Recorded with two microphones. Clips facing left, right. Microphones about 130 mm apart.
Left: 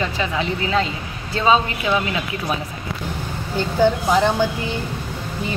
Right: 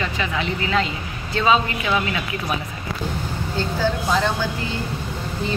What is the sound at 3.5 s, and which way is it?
Speech, 15° left (ahead or behind).